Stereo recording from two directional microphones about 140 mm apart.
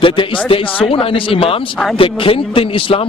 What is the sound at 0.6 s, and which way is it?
Speech, 10° left (ahead or behind).